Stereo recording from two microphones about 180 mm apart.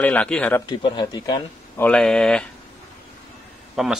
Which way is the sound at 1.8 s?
5° left (ahead or behind).